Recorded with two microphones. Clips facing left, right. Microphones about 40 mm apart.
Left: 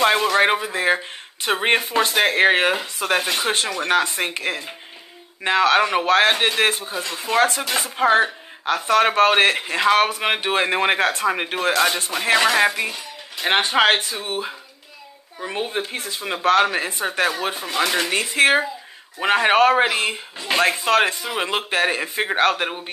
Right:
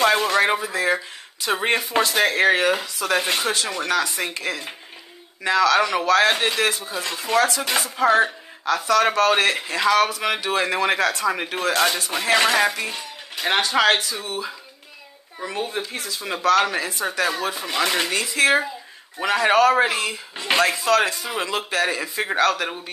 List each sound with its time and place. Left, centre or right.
0.0 s speech: left
16.4 s speech: left
17.8 s speech: right
18.1 s speech: left